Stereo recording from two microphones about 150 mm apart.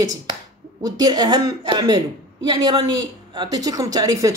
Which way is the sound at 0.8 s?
25° right (ahead or behind).